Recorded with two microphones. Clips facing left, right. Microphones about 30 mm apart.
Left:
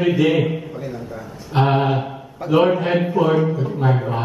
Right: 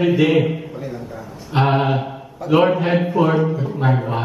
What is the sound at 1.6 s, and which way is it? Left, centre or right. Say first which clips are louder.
Speech: right 1 dB; centre.